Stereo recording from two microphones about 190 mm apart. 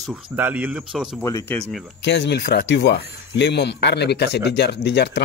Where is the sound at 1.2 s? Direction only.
15° left (ahead or behind).